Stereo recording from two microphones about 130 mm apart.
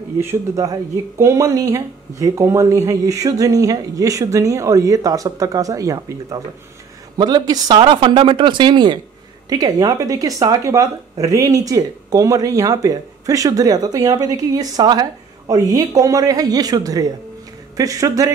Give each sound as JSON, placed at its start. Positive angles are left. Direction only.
{"t": 0.2, "sound": "speech", "side_deg": -20}